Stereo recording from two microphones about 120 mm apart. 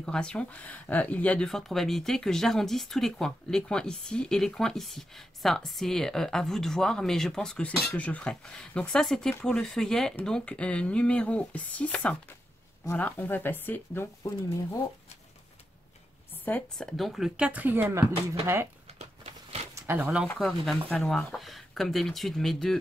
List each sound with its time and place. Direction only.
0.0 s speech: 5° left (ahead or behind)
16.7 s speech: centre (ahead or behind)
17.5 s a woman's voice: 15° right (ahead or behind)
18.9 s a sound: 60° right (ahead or behind)
19.7 s a sound: 20° right (ahead or behind)
20.3 s speech: centre (ahead or behind)